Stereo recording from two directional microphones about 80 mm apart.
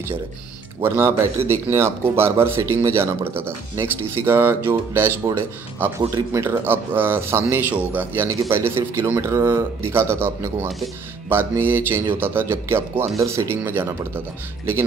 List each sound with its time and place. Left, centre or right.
0.8 s speech: right
5.9 s speech: right
8.3 s speech: right